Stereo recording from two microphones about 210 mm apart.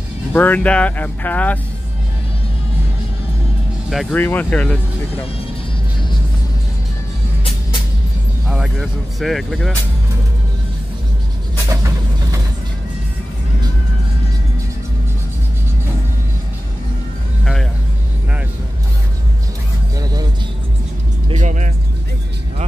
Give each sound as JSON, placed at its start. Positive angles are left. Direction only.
{"t": 0.3, "sound": "speech", "side_deg": 10}
{"t": 3.9, "sound": "speech", "side_deg": 5}
{"t": 8.5, "sound": "speech", "side_deg": 0}
{"t": 11.7, "sound": "vehicle", "side_deg": -15}
{"t": 20.0, "sound": "music", "side_deg": -20}
{"t": 21.3, "sound": "vehicle", "side_deg": -35}